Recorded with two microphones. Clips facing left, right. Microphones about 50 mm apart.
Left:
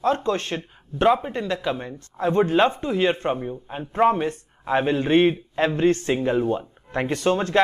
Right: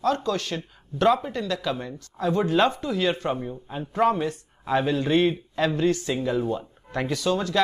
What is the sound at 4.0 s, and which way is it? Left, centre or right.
Speech, left.